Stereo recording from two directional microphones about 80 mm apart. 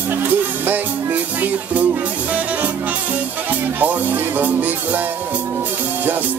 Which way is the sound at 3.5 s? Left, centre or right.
Right.